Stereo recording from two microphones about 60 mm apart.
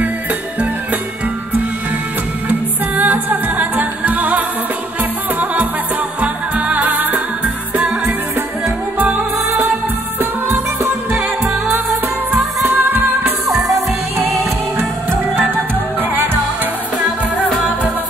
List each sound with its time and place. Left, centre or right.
3.0 s music: right
12.6 s music: right
13.6 s music: right
14.1 s music: right